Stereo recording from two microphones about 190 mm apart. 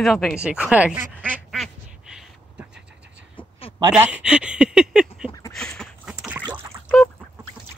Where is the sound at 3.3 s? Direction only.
30° left (ahead or behind).